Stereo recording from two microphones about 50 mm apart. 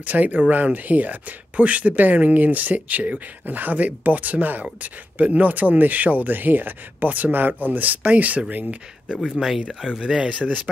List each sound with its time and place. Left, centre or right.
0.0 s speech: right
9.8 s speech: centre